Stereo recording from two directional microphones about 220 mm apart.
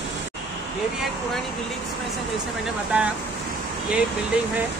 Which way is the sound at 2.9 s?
5° right (ahead or behind).